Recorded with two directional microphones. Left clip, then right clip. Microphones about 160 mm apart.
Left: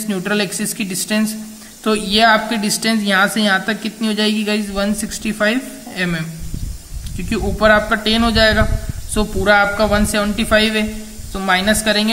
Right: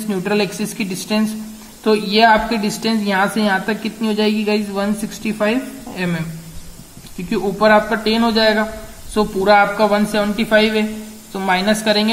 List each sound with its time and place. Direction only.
0.1 s a woman's voice: 50° left (ahead or behind)
7.2 s a woman's voice: 60° left (ahead or behind); by 12.1 s 40° left (ahead or behind)